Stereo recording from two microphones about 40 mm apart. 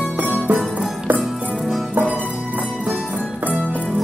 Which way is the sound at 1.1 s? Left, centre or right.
Right.